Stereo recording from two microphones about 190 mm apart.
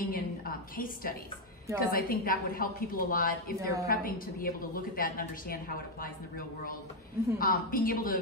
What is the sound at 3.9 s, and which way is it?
A woman's voice, 50° left (ahead or behind).